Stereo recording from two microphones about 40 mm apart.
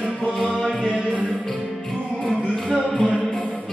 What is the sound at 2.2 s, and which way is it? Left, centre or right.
Music, left.